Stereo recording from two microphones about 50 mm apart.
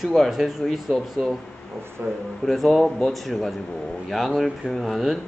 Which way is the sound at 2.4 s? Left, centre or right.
Centre.